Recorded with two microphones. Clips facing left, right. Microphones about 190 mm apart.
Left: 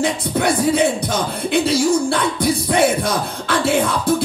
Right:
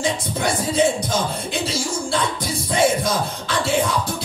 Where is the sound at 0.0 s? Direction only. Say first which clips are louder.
Left 4 dB; 65° left (ahead or behind).